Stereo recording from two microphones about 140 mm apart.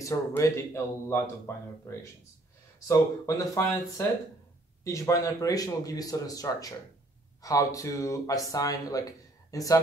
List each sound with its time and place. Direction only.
0.0 s speech: 20° left (ahead or behind)
2.9 s speech: 25° left (ahead or behind)